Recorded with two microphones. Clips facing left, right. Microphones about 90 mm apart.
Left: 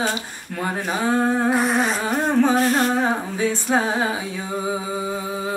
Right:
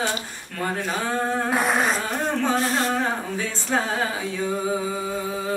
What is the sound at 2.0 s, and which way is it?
Singing, 15° left (ahead or behind).